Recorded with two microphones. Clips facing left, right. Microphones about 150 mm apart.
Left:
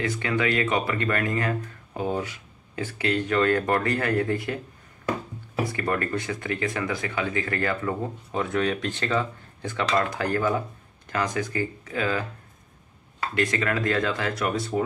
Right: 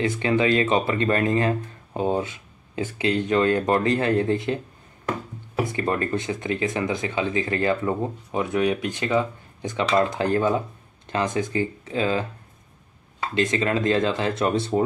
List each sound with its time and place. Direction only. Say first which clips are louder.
0.2 s speech: right 5 dB; 25° right (ahead or behind)
5.7 s speech: right 3 dB; 20° right (ahead or behind)
13.3 s speech: right 3 dB; 20° right (ahead or behind)